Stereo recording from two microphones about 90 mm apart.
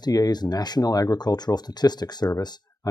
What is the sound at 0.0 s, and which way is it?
Speech, 50° left (ahead or behind).